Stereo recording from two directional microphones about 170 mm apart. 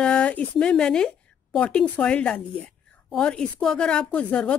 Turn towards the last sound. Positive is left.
turn(degrees=5)  # may be behind; listen again after turning